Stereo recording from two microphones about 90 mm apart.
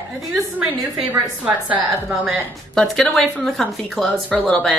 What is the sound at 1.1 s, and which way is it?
Speech, 20° right (ahead or behind).